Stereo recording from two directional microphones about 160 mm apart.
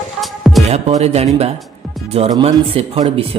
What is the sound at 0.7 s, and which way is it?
A man's voice, 40° right (ahead or behind).